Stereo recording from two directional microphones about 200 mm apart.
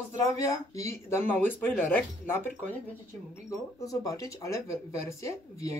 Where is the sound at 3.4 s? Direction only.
15° left (ahead or behind).